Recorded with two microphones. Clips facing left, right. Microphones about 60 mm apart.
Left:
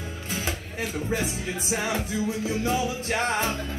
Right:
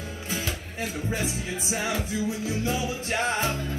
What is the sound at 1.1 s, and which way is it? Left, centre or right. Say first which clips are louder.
Music: left 2 dB; left.